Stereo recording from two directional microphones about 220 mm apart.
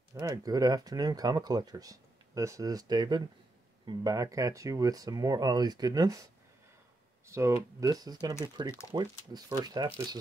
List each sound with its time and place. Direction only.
0.1 s speech: 15° right (ahead or behind)
7.2 s speech: 15° right (ahead or behind)